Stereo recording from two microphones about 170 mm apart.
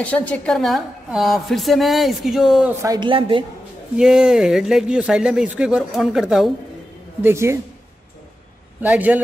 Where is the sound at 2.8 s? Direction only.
25° right (ahead or behind).